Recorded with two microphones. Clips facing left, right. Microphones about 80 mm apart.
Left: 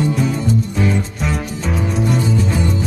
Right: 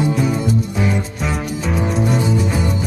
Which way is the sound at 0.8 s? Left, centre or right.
Centre.